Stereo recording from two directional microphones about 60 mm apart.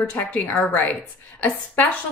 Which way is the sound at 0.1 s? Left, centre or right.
Left.